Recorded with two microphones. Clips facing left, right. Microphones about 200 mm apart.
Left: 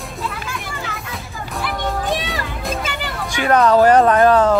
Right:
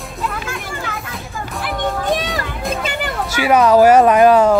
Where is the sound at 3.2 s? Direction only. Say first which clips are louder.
Right 1 dB; 5° right (ahead or behind).